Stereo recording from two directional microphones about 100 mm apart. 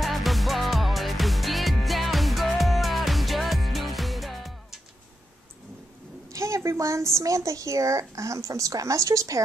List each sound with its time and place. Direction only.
0.0 s music: centre (ahead or behind)
6.3 s a sound: 30° right (ahead or behind)
7.2 s a woman's voice: 30° right (ahead or behind)